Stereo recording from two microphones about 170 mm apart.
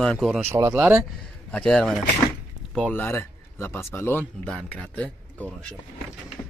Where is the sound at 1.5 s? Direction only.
5° left (ahead or behind).